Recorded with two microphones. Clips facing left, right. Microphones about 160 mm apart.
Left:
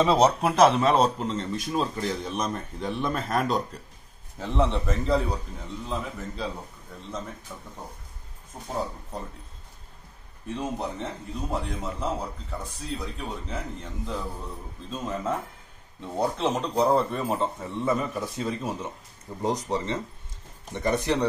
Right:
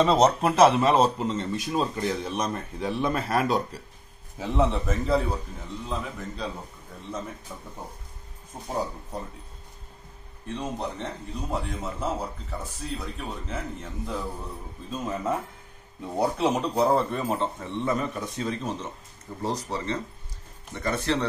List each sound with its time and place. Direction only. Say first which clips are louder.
0.0 s speech: even; centre (ahead or behind)
8.5 s speech: right 1 dB; 15° right (ahead or behind)
10.5 s speech: left 1 dB; 5° left (ahead or behind)
19.4 s a man's voice: left 3 dB; 20° left (ahead or behind)